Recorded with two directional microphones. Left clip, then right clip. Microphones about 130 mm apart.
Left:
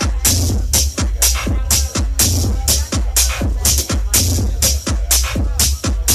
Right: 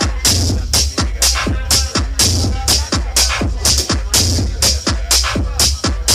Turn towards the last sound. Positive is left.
turn(degrees=50)  # may be behind; listen again after turning